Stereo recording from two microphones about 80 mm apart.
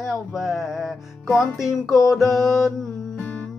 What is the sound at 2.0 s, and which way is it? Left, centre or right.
Music, left.